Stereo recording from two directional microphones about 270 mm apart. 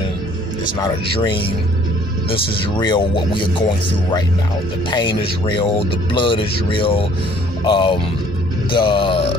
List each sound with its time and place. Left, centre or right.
0.8 s speech: centre